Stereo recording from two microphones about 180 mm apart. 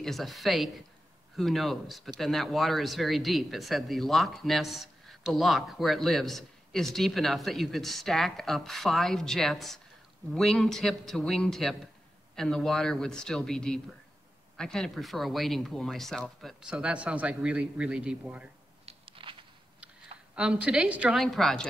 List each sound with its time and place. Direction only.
0.0 s speech: centre (ahead or behind)
18.9 s a sound: 30° right (ahead or behind)
20.3 s speech: 5° right (ahead or behind)